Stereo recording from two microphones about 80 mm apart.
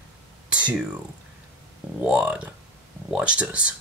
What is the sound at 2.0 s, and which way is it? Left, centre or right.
Speech, centre.